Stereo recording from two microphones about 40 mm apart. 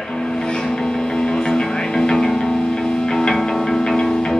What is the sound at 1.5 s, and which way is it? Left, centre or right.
Music, centre.